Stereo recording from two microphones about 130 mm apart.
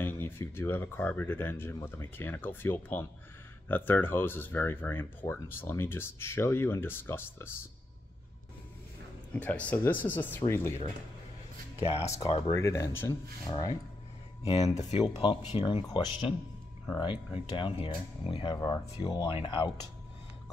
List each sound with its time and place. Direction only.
0.0 s speech: 20° left (ahead or behind)
9.3 s speech: 10° left (ahead or behind)
11.8 s speech: 50° left (ahead or behind)
12.4 s speech: 25° left (ahead or behind)
13.5 s speech: 30° left (ahead or behind)
14.4 s speech: 50° left (ahead or behind)
15.2 s speech: 40° left (ahead or behind)
18.5 s speech: 30° left (ahead or behind)
19.2 s speech: 40° left (ahead or behind)